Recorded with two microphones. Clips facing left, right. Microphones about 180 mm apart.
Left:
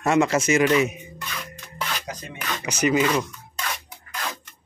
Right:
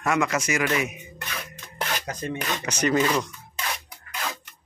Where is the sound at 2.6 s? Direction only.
10° left (ahead or behind).